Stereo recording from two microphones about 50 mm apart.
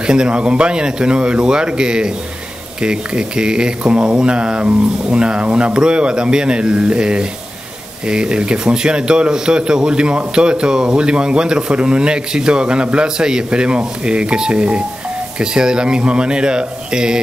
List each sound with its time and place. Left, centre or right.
0.0 s speech: centre